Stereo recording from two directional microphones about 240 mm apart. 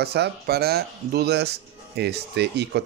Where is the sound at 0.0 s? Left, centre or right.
Right.